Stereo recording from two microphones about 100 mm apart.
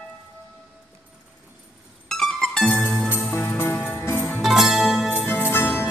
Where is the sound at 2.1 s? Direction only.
5° left (ahead or behind).